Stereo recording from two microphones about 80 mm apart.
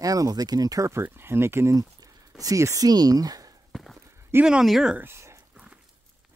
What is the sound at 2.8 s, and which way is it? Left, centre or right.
Speech, right.